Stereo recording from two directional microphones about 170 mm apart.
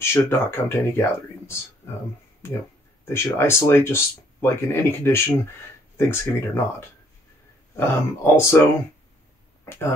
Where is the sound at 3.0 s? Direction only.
15° left (ahead or behind).